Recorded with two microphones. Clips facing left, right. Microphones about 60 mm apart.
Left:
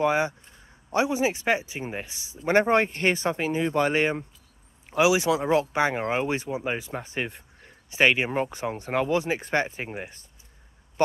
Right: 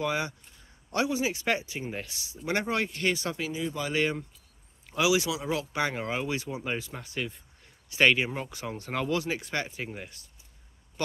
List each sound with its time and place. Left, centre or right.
0.0 s speech: left
2.4 s speech: left
3.6 s speech: left
3.9 s speech: left
5.3 s speech: left
8.0 s speech: centre
8.3 s speech: left